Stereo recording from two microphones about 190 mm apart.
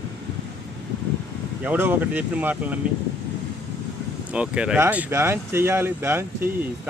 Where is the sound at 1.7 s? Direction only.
10° right (ahead or behind).